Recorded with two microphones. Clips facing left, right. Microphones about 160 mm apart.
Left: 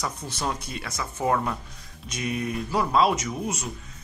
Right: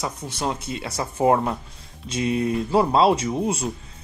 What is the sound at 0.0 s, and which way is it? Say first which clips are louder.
Speech: right 3 dB; 25° right (ahead or behind).